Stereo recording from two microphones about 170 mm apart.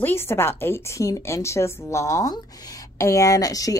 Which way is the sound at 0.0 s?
15° left (ahead or behind).